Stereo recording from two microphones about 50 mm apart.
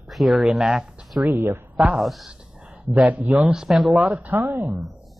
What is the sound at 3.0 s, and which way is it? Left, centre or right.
Speech, right.